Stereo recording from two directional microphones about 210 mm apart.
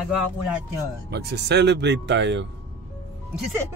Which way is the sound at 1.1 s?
50° right (ahead or behind).